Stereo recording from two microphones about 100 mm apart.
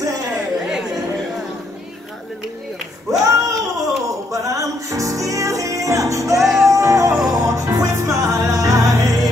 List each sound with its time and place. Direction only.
0.0 s chatter: 35° right (ahead or behind)
3.1 s a sound: 35° right (ahead or behind)
4.3 s music: 35° right (ahead or behind)
6.4 s music: centre (ahead or behind)
6.7 s music: 30° right (ahead or behind)
7.2 s music: 5° right (ahead or behind)
7.4 s music: 30° right (ahead or behind)